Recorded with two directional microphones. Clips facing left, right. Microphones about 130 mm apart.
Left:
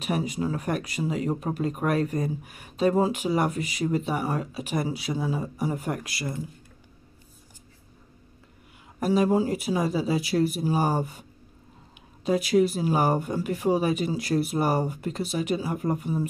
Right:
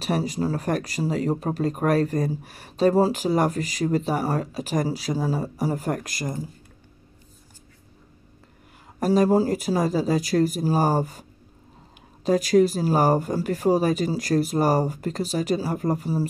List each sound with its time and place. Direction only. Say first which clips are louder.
0.0 s speech: right 3 dB; 35° right (ahead or behind)
9.0 s speech: right 3 dB; 40° right (ahead or behind)
12.3 s speech: right 3 dB; 40° right (ahead or behind)